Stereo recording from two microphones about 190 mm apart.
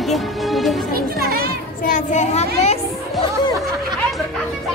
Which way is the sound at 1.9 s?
40° left (ahead or behind).